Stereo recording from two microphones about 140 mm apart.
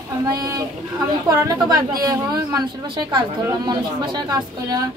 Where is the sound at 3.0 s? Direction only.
35° right (ahead or behind).